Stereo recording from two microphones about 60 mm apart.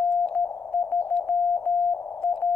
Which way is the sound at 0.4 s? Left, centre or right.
Left.